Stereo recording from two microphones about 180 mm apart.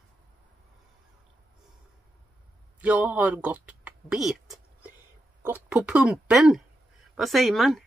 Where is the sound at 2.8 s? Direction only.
10° right (ahead or behind).